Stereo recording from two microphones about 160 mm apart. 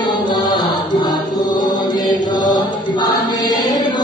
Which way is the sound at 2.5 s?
25° left (ahead or behind).